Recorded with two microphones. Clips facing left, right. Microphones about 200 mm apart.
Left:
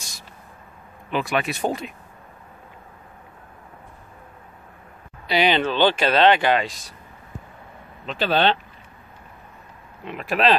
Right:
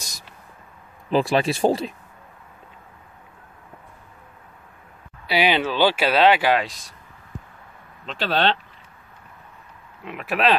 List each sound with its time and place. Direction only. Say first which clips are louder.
1.1 s speech: right 4 dB; 30° right (ahead or behind)
5.2 s speech: left 1 dB; 10° right (ahead or behind)
8.0 s speech: left 2 dB; 5° left (ahead or behind)
10.0 s speech: left 1 dB; 5° right (ahead or behind)